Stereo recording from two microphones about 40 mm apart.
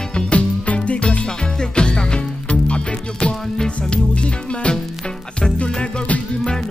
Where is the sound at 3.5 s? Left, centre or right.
Centre.